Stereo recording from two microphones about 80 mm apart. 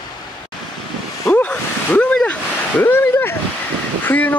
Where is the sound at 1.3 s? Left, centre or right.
Centre.